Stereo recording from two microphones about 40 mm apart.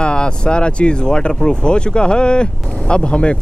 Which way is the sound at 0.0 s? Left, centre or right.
Left.